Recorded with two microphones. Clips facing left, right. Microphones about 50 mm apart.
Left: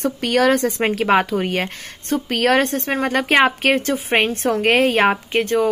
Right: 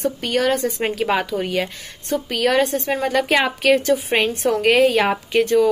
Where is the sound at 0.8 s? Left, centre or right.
Left.